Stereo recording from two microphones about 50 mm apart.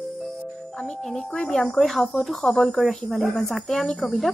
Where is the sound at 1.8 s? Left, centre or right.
Centre.